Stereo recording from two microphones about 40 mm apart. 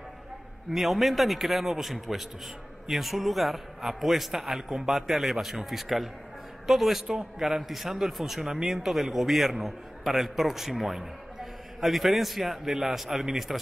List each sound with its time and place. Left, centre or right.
0.7 s a man's voice: centre